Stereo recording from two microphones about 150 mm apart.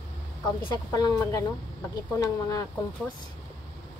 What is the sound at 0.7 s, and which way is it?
A woman's voice, 25° left (ahead or behind).